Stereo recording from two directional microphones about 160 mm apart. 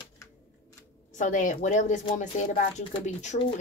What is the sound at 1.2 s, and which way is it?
A woman's voice, 55° left (ahead or behind).